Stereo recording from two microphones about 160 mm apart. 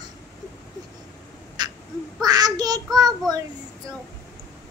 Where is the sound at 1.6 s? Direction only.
25° right (ahead or behind).